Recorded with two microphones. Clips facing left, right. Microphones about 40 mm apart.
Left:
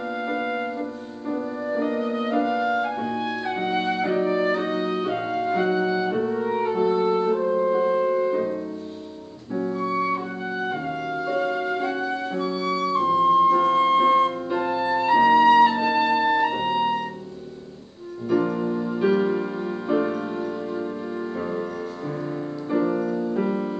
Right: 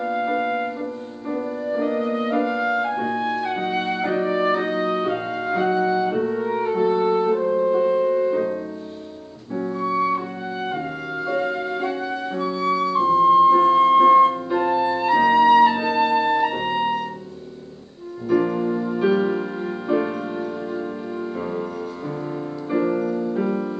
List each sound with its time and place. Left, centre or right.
0.1 s music: centre
1.7 s music: centre
9.6 s music: centre
11.2 s music: centre
12.8 s flute: centre
13.4 s music: right
13.7 s music: centre
18.3 s music: centre
22.7 s music: centre